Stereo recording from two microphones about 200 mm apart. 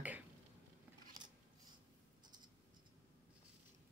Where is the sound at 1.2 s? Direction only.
20° right (ahead or behind).